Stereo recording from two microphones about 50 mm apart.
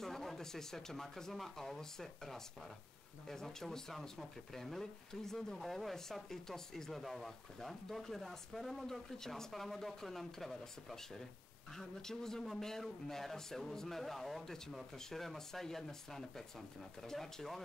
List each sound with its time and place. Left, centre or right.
0.0 s speech: centre